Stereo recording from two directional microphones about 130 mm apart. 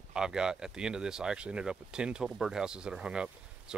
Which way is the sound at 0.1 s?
5° right (ahead or behind).